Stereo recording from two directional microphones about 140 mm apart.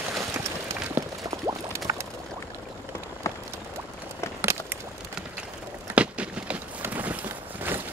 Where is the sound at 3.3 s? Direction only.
20° left (ahead or behind).